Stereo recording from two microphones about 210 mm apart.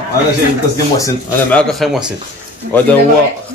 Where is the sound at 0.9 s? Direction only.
15° left (ahead or behind).